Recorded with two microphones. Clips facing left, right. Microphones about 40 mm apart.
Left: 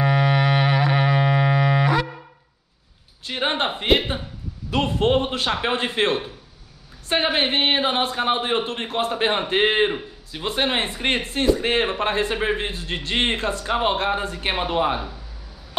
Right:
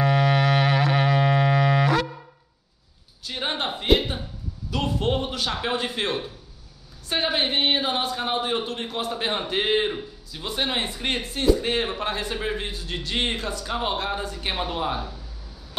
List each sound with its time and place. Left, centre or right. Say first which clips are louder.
0.0 s music: left 1 dB; centre
3.3 s a sound: left 5 dB; left
4.6 s speech: left 5 dB; left